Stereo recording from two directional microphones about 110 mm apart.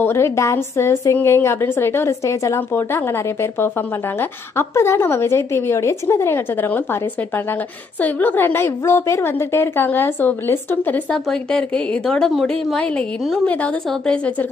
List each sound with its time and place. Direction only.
0.0 s a woman's voice: 25° left (ahead or behind)
11.1 s a woman's voice: 10° left (ahead or behind)